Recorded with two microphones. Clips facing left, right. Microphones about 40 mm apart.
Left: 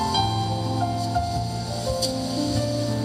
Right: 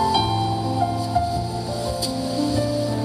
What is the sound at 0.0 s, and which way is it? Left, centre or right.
Music, centre.